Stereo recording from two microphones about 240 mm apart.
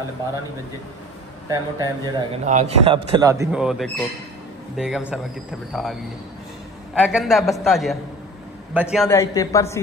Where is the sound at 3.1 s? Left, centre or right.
Centre.